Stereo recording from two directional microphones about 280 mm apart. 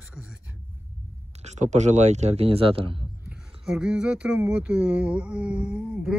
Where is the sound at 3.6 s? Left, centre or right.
Centre.